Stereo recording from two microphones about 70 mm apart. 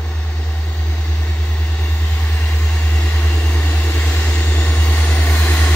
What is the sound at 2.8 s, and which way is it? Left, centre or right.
Vehicle, left.